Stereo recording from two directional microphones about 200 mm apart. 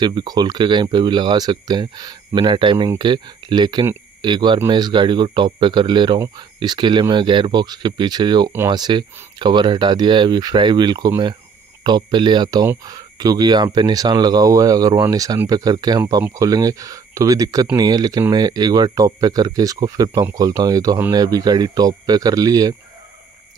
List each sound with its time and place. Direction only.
0.0 s speech: 20° right (ahead or behind)